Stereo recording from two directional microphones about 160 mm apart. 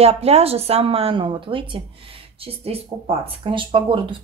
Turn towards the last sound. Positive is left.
turn(degrees=-30)  # may be behind; listen again after turning